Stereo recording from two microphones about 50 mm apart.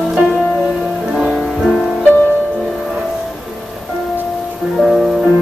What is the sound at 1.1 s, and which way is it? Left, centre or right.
Music, centre.